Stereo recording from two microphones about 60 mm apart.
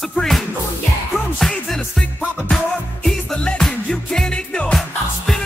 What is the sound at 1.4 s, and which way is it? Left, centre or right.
Music, centre.